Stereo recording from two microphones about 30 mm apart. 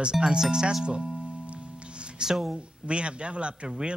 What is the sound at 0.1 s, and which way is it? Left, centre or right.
Speech, right.